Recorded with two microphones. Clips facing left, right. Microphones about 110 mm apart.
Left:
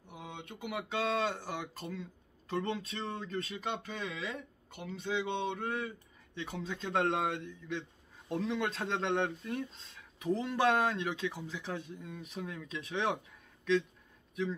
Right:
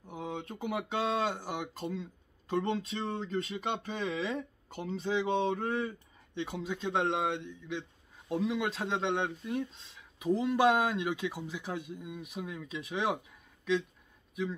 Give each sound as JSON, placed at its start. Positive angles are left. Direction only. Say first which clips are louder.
{"t": 0.0, "sound": "a sound", "louder": "right 7 dB", "side_deg": -30}
{"t": 1.0, "sound": "speech", "louder": "even", "side_deg": -10}
{"t": 6.3, "sound": "a man's voice", "louder": "right 4 dB", "side_deg": -15}